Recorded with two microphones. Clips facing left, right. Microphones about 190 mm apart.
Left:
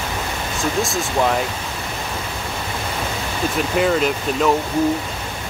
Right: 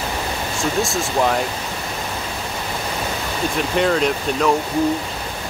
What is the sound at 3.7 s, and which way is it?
Speech, 5° left (ahead or behind).